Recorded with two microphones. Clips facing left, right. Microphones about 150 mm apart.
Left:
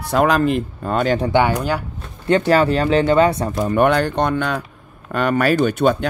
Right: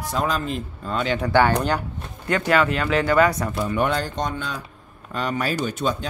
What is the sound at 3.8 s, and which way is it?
Speech, 65° left (ahead or behind).